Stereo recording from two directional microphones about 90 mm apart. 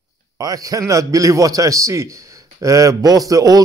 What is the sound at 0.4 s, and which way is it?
A man's voice, 40° right (ahead or behind).